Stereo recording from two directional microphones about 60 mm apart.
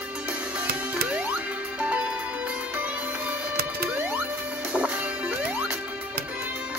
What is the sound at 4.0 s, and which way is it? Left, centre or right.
Music, right.